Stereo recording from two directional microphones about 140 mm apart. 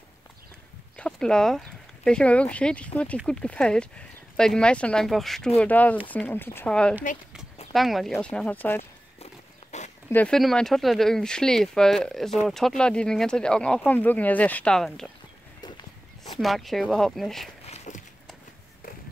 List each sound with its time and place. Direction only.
0.9 s speech: 5° left (ahead or behind)
9.2 s walk: 55° left (ahead or behind)
10.0 s speech: 10° left (ahead or behind)
16.3 s speech: centre (ahead or behind)
17.6 s a sound: 55° left (ahead or behind)